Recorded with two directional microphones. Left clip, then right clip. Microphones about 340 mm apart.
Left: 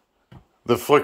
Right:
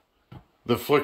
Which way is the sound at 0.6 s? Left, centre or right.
Centre.